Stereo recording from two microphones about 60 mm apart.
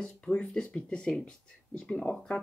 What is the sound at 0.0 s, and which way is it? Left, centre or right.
Speech, centre.